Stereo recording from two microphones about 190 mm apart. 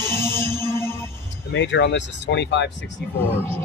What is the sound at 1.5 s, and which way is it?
Speech, 70° left (ahead or behind).